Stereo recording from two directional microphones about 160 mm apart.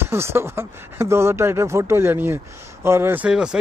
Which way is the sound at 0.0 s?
15° right (ahead or behind).